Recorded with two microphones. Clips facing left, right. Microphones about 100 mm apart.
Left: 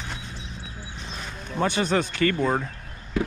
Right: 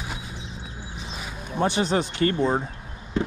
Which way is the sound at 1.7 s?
20° right (ahead or behind).